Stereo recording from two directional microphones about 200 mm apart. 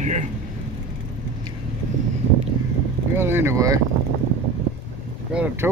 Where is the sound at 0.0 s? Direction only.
35° right (ahead or behind).